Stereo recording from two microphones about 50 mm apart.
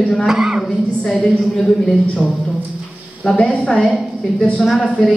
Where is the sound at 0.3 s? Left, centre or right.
Centre.